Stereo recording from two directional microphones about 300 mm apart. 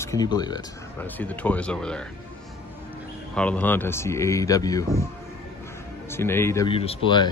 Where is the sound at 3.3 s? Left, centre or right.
Centre.